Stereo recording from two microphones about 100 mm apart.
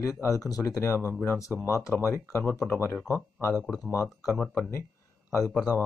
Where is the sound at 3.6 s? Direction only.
Centre (ahead or behind).